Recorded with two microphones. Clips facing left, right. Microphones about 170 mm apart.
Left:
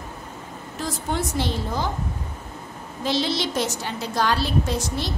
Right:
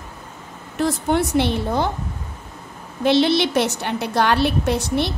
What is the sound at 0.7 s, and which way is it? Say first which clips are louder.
A woman's voice: right 8 dB; 65° right (ahead or behind).